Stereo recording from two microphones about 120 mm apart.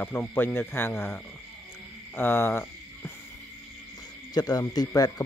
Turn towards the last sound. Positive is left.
turn(degrees=35)  # may be behind; listen again after turning